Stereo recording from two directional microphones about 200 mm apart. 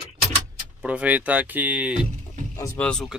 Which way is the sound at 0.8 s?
5° right (ahead or behind).